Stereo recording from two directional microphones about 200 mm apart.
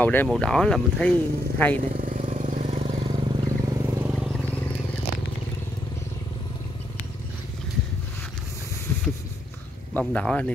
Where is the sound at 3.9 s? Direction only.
10° right (ahead or behind); by 4.7 s 10° left (ahead or behind).